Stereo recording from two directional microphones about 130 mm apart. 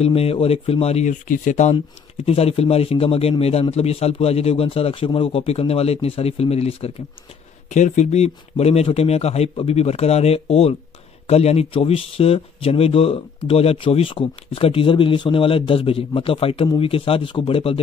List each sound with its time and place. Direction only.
0.0 s speech: 50° left (ahead or behind)
1.2 s speech: 85° left; by 1.8 s 65° left (ahead or behind)
2.2 s speech: 50° left (ahead or behind)
7.7 s speech: 65° left (ahead or behind); by 17.7 s 45° left (ahead or behind)